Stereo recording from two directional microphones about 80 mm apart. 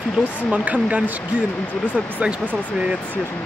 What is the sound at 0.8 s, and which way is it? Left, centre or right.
Speech, centre.